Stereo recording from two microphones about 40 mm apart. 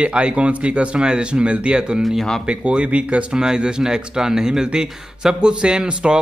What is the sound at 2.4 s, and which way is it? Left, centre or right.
Speech, right.